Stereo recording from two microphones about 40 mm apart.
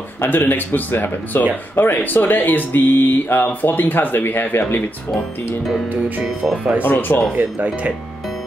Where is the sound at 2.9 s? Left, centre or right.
Left.